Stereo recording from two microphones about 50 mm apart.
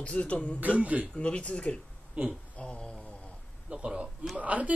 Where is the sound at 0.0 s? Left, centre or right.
Left.